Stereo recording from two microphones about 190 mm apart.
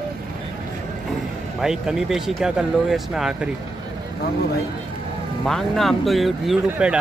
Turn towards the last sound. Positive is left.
turn(degrees=-5)  # may be behind; listen again after turning